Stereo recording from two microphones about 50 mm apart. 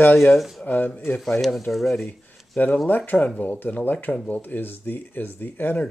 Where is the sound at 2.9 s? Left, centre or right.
Left.